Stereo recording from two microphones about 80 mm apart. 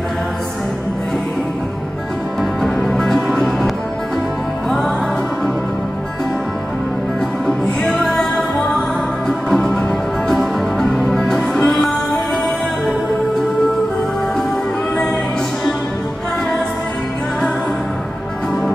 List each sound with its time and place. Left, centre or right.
2.6 s music: centre
7.4 s music: centre